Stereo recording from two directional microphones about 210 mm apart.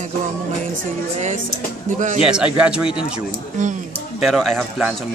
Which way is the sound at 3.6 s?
35° right (ahead or behind).